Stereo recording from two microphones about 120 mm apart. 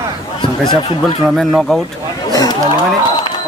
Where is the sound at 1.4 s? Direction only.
Centre (ahead or behind).